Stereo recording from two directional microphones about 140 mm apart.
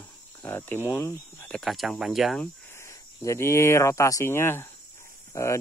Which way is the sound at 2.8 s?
20° left (ahead or behind).